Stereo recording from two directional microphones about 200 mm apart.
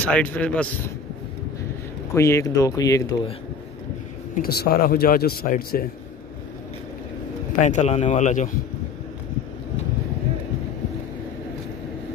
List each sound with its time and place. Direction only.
0.0 s speech: 5° left (ahead or behind)
2.1 s speech: 15° left (ahead or behind)
4.5 s speech: 50° left (ahead or behind)
7.6 s speech: 35° left (ahead or behind)